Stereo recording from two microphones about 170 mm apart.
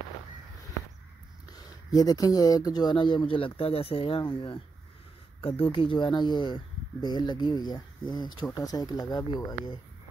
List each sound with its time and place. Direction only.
1.6 s speech: 20° left (ahead or behind)